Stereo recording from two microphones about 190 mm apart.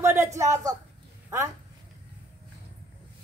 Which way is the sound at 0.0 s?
15° right (ahead or behind).